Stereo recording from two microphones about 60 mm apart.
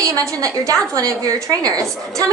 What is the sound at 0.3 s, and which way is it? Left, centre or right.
A woman's voice, right.